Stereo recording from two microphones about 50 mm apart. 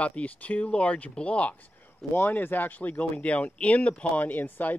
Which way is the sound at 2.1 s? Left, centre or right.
Left.